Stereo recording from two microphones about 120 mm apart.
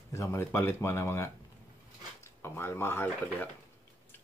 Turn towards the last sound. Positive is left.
turn(degrees=20)  # may be behind; listen again after turning